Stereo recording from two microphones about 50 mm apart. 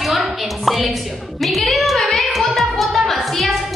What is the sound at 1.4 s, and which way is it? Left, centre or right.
Music, centre.